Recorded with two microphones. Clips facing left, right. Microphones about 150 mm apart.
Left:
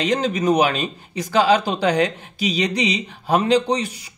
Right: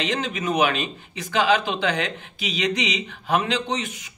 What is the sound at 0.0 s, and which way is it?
Speech, 40° left (ahead or behind).